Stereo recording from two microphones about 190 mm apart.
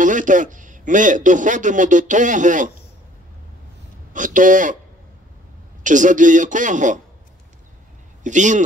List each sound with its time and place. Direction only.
0.0 s a man's voice: 45° right (ahead or behind)
4.1 s a man's voice: 45° right (ahead or behind)
5.9 s a man's voice: 40° right (ahead or behind)
8.2 s a man's voice: 40° right (ahead or behind)